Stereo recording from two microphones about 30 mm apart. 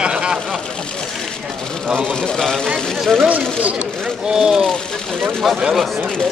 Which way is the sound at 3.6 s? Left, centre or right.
Right.